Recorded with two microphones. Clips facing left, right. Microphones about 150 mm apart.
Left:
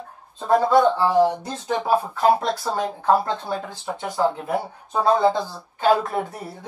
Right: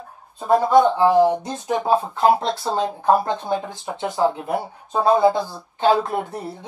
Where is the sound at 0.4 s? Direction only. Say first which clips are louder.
Right 2 dB; 15° right (ahead or behind).